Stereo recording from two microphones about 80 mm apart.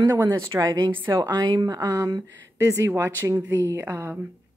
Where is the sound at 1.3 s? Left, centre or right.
Right.